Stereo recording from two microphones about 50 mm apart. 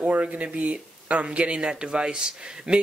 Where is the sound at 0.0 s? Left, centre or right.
Right.